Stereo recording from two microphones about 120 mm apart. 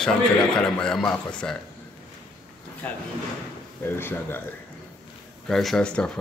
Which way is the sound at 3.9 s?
20° left (ahead or behind).